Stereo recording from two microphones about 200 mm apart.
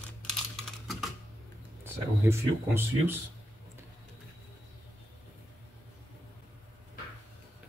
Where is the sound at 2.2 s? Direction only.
10° right (ahead or behind).